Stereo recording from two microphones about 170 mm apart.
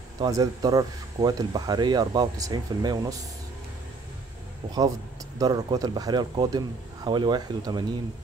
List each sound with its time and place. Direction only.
0.2 s speech: 20° right (ahead or behind)
5.4 s speech: 20° right (ahead or behind)